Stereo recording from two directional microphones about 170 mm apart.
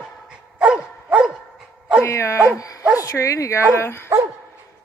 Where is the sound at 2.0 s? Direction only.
15° left (ahead or behind).